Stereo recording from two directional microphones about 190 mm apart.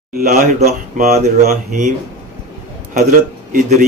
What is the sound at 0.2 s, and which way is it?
A man's voice, 40° right (ahead or behind).